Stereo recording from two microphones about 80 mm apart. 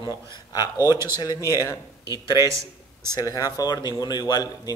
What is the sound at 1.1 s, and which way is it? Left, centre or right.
Speech, left.